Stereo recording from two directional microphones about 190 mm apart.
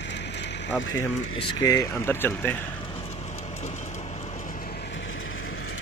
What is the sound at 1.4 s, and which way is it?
Speech, 20° left (ahead or behind).